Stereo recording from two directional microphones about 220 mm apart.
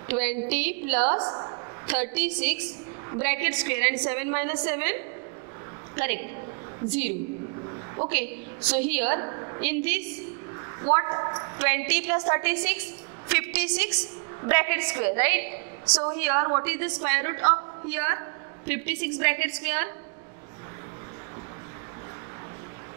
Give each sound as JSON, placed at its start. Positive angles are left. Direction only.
{"t": 0.1, "sound": "a woman's voice", "side_deg": -10}
{"t": 1.0, "sound": "a woman's voice", "side_deg": -30}
{"t": 1.9, "sound": "a woman's voice", "side_deg": -10}
{"t": 7.6, "sound": "a sound", "side_deg": -25}
{"t": 8.1, "sound": "a woman's voice", "side_deg": -10}
{"t": 9.3, "sound": "a sound", "side_deg": -20}
{"t": 9.6, "sound": "a woman's voice", "side_deg": -10}